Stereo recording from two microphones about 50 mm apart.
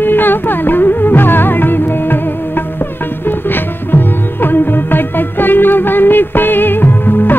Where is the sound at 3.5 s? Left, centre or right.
Left.